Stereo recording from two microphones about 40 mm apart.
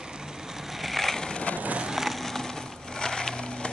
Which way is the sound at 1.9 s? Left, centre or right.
Centre.